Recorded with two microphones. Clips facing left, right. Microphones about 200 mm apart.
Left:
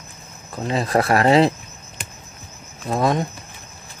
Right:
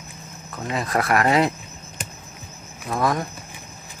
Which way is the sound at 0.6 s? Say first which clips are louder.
Left 4 dB; 30° left (ahead or behind).